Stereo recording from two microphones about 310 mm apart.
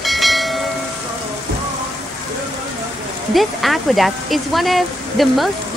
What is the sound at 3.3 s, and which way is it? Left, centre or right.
Speech, centre.